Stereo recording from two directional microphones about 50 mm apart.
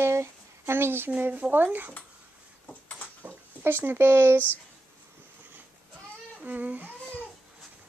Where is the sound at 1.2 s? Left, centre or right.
Right.